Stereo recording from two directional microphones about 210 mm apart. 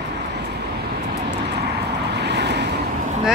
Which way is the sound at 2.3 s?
55° right (ahead or behind).